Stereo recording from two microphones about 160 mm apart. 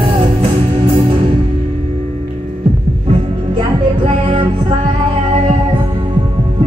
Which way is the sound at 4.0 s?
35° right (ahead or behind).